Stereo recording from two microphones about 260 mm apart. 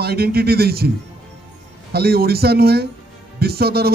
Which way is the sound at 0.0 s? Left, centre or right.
Right.